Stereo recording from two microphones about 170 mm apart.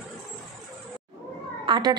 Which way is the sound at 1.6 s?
25° right (ahead or behind).